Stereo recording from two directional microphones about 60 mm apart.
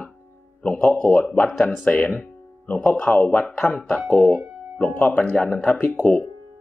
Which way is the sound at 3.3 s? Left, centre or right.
Centre.